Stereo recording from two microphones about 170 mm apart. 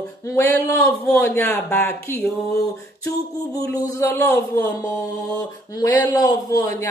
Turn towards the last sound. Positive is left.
turn(degrees=20)  # may be behind; listen again after turning